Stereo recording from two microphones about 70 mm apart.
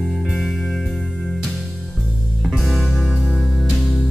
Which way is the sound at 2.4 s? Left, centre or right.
Centre.